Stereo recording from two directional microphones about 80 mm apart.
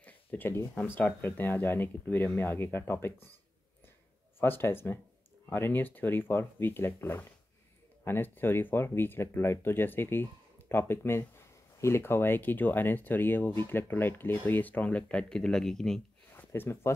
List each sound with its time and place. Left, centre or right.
0.0 s speech: left
4.4 s speech: left; by 16.0 s centre
16.3 s speech: left